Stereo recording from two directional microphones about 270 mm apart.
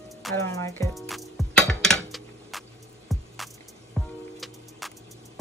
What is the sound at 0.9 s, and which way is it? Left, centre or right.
Music, centre.